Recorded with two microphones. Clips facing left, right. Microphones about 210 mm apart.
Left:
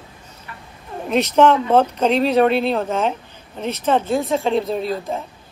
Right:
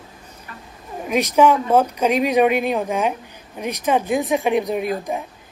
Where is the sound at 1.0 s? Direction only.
10° right (ahead or behind).